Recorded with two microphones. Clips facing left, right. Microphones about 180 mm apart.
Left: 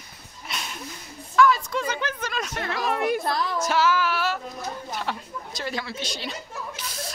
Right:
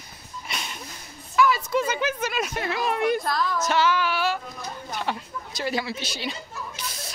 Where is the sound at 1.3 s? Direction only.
5° right (ahead or behind).